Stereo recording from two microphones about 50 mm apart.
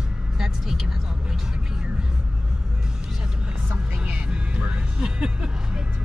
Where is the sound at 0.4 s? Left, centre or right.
Centre.